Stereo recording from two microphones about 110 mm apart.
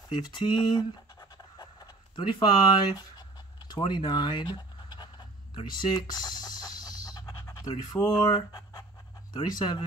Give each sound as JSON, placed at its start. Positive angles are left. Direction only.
{"t": 0.1, "sound": "speech", "side_deg": 40}
{"t": 1.6, "sound": "fowl", "side_deg": 40}
{"t": 9.3, "sound": "speech", "side_deg": 40}